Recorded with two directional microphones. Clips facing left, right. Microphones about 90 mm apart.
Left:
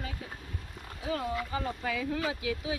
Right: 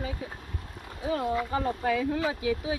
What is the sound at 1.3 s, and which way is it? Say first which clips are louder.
Speech: right 5 dB; 40° right (ahead or behind).